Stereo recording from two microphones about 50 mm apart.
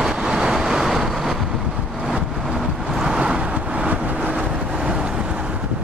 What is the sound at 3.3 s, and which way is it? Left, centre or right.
Vehicle, right.